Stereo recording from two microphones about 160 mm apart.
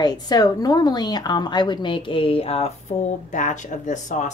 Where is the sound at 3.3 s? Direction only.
50° left (ahead or behind).